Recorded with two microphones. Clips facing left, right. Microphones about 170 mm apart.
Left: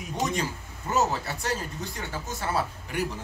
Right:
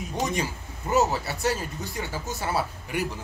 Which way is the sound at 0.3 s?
10° right (ahead or behind).